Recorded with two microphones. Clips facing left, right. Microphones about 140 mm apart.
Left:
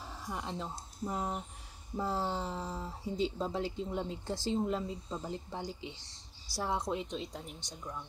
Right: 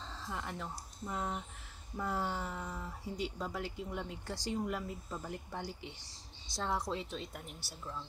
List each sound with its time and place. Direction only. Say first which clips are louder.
0.0 s speech: left 2 dB; 15° left (ahead or behind)
1.0 s a woman's voice: left 3 dB; 30° left (ahead or behind)